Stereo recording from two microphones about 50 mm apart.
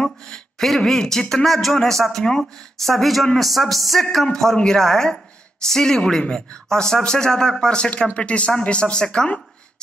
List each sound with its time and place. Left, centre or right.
0.0 s speech: centre
0.6 s speech: centre